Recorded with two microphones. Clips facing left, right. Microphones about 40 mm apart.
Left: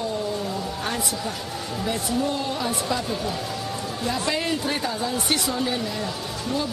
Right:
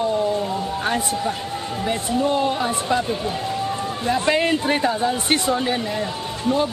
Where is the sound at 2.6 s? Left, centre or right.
Right.